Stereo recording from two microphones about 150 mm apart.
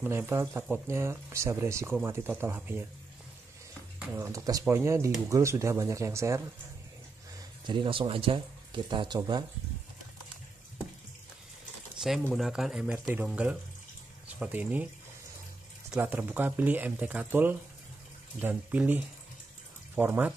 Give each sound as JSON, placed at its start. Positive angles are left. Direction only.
{"t": 0.0, "sound": "speech", "side_deg": -15}
{"t": 4.1, "sound": "speech", "side_deg": -20}
{"t": 7.6, "sound": "speech", "side_deg": -35}
{"t": 12.3, "sound": "speech", "side_deg": 0}
{"t": 16.0, "sound": "speech", "side_deg": -10}